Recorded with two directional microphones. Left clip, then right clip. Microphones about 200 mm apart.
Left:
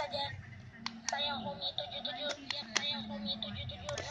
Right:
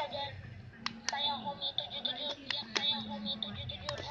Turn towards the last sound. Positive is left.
turn(degrees=35)  # may be behind; listen again after turning